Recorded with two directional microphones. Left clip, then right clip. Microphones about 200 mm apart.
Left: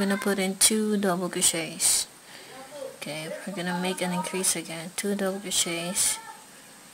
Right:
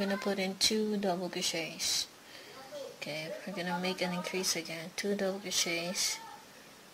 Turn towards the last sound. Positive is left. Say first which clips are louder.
# left 4 dB
turn(degrees=5)  # may be behind; listen again after turning